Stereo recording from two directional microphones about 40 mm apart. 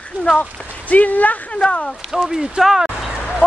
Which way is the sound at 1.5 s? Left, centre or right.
Left.